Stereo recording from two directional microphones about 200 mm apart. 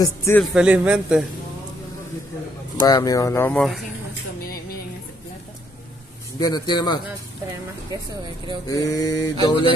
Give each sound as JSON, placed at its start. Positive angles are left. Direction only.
{"t": 0.0, "sound": "speech", "side_deg": 15}
{"t": 0.4, "sound": "a man's voice", "side_deg": -5}
{"t": 2.8, "sound": "speech", "side_deg": 20}
{"t": 6.4, "sound": "mantra", "side_deg": 20}
{"t": 7.9, "sound": "speech", "side_deg": -20}
{"t": 8.6, "sound": "mantra", "side_deg": 20}